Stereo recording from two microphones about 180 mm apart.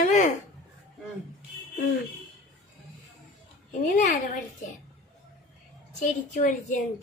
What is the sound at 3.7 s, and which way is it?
Speech, 45° left (ahead or behind).